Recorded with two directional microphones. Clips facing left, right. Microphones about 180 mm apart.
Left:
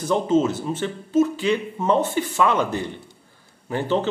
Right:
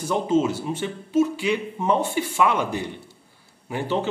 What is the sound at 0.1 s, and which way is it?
Speech, 10° right (ahead or behind).